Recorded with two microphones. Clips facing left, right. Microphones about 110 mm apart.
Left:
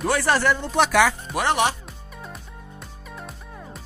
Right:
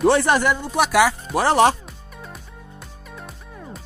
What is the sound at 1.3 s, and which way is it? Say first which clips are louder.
Speech: right 6 dB; 35° right (ahead or behind).